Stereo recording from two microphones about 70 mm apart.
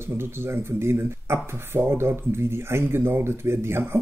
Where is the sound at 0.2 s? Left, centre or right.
Right.